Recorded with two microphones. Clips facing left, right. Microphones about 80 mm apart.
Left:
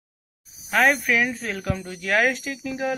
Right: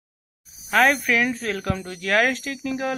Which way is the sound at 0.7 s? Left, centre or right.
Centre.